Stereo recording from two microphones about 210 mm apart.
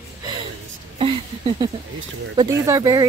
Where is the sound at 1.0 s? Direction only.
25° right (ahead or behind).